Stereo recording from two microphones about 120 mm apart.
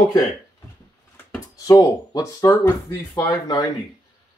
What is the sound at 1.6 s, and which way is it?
Speech, 30° left (ahead or behind).